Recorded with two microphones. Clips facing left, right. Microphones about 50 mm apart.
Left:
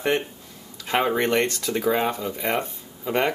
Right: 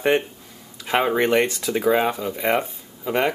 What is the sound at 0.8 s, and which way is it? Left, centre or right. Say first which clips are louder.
Speech: right 2 dB; centre.